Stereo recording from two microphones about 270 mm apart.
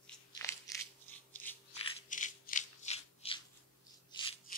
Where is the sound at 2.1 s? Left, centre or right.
Left.